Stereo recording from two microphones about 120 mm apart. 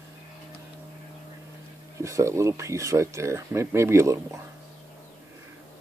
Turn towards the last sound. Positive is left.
turn(degrees=-25)  # may be behind; listen again after turning